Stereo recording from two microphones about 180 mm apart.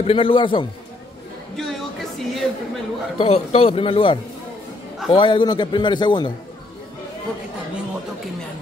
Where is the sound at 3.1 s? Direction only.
30° left (ahead or behind).